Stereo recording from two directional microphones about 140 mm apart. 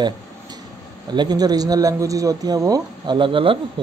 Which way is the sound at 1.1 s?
30° right (ahead or behind).